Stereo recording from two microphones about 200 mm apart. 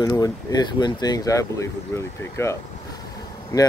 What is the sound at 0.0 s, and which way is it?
Speech, 20° left (ahead or behind).